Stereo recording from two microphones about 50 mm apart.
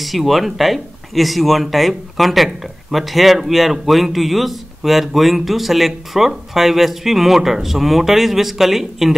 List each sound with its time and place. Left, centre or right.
0.0 s speech: centre